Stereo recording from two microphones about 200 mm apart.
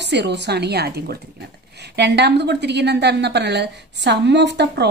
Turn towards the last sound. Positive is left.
turn(degrees=-55)  # may be behind; listen again after turning